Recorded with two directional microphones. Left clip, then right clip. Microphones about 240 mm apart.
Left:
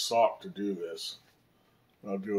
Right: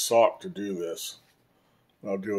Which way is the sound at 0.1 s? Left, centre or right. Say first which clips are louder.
Right 5 dB; right.